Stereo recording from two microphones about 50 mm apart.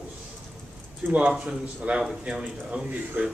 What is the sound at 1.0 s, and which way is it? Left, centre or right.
Speech, right.